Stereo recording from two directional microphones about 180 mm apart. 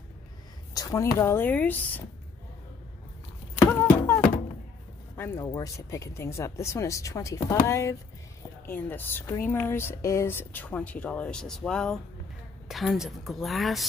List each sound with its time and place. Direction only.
0.7 s speech: 20° left (ahead or behind)
3.5 s a sound: 15° left (ahead or behind)
5.1 s a woman's voice: 15° left (ahead or behind)